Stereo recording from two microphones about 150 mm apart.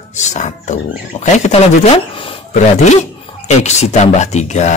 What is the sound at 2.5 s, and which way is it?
Speech, 50° left (ahead or behind).